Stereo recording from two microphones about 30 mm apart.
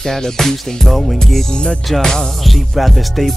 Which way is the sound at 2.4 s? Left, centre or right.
Centre.